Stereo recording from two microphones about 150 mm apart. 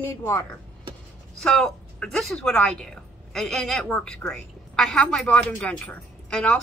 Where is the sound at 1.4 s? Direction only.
5° left (ahead or behind).